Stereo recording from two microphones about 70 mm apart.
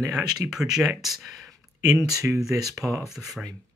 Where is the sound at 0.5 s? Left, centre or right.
Centre.